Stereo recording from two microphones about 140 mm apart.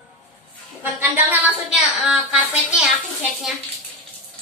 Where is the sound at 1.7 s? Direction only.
5° right (ahead or behind).